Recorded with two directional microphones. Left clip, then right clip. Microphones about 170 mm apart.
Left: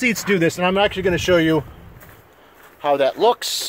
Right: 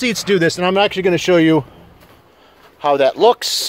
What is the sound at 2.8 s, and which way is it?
Speech, 45° right (ahead or behind).